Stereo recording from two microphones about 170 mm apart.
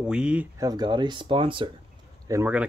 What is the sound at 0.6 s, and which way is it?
Speech, 25° right (ahead or behind).